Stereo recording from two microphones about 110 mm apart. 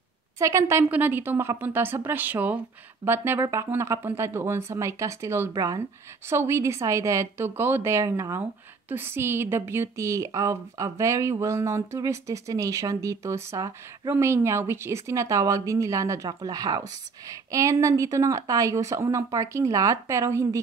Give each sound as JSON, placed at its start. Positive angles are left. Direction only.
{"t": 0.4, "sound": "speech", "side_deg": -25}
{"t": 5.5, "sound": "speech", "side_deg": -35}
{"t": 6.2, "sound": "speech", "side_deg": -25}